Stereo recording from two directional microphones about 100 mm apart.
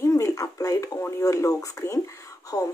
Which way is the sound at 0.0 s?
30° left (ahead or behind).